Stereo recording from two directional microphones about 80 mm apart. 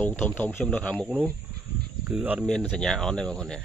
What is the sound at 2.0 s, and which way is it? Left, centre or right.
Speech, centre.